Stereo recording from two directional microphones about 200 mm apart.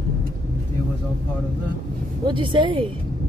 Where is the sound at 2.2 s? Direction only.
25° right (ahead or behind).